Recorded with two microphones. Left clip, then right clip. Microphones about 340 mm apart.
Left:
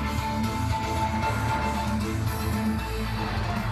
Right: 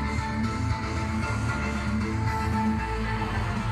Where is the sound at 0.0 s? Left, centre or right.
Left.